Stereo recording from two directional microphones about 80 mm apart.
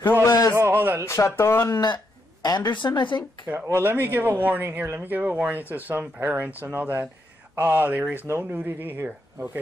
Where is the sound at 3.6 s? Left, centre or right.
Right.